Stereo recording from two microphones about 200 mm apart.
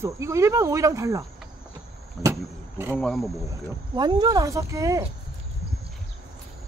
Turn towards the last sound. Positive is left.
turn(degrees=-15)  # may be behind; listen again after turning